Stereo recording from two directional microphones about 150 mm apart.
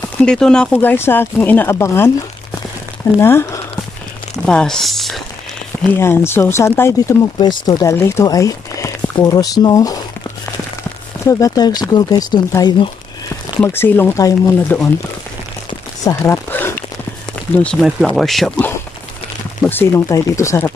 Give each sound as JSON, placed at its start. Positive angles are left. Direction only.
{"t": 0.2, "sound": "speech", "side_deg": 5}
{"t": 0.7, "sound": "speech", "side_deg": 15}
{"t": 3.2, "sound": "speech", "side_deg": 15}
{"t": 4.5, "sound": "speech", "side_deg": 5}
{"t": 5.9, "sound": "speech", "side_deg": 15}
{"t": 7.3, "sound": "speech", "side_deg": 30}
{"t": 13.6, "sound": "speech", "side_deg": 15}
{"t": 16.0, "sound": "speech", "side_deg": 20}
{"t": 16.4, "sound": "a sound", "side_deg": 15}
{"t": 17.8, "sound": "speech", "side_deg": 0}
{"t": 19.6, "sound": "speech", "side_deg": 15}